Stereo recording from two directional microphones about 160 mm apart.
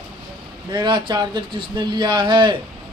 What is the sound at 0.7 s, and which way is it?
Speech, 30° right (ahead or behind).